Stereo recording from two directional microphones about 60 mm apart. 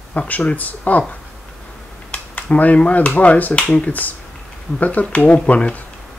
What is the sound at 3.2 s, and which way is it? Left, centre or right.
Speech, left.